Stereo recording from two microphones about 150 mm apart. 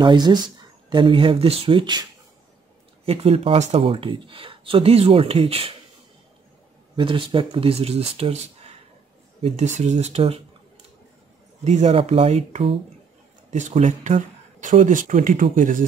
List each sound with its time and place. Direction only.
0.0 s speech: 30° right (ahead or behind)
3.1 s speech: 40° right (ahead or behind)
7.0 s speech: 35° right (ahead or behind)
9.4 s speech: 50° right (ahead or behind)
11.6 s speech: 50° right (ahead or behind); by 15.8 s 65° right (ahead or behind)